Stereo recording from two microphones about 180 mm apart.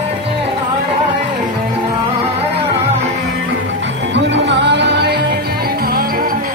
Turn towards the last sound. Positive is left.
turn(degrees=-55)  # may be behind; listen again after turning